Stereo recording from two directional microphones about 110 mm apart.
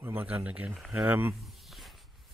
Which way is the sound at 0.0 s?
20° right (ahead or behind).